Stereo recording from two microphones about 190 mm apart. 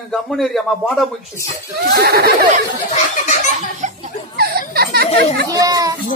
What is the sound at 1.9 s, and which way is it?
Speech, 55° right (ahead or behind).